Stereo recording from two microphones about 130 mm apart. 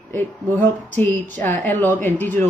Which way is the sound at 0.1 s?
15° left (ahead or behind).